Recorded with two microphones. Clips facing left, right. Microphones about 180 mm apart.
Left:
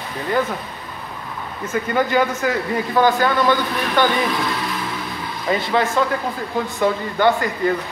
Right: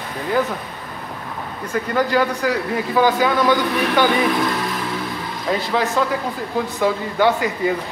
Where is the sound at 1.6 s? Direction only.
5° left (ahead or behind).